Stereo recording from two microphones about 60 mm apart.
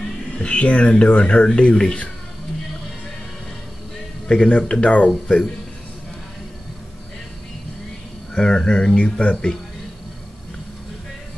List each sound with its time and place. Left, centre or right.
0.4 s speech: centre
4.3 s speech: centre
8.4 s speech: centre